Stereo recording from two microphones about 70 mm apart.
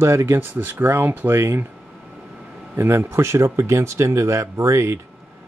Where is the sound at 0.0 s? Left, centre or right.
Right.